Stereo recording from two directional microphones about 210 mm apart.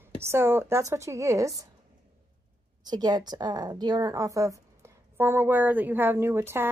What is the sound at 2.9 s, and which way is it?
A woman's voice, 20° right (ahead or behind).